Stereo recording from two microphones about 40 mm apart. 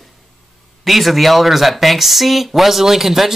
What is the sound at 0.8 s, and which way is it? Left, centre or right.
Speech, centre.